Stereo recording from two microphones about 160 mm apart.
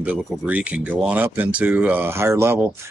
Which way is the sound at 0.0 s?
10° right (ahead or behind).